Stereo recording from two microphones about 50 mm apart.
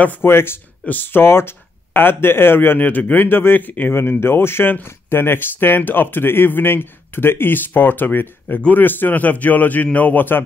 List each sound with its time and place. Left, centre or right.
0.2 s speech: left
0.8 s speech: left
3.3 s speech: left
3.9 s speech: left